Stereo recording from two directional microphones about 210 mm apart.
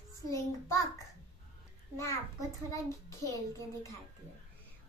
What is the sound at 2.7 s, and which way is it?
Speech, 15° left (ahead or behind).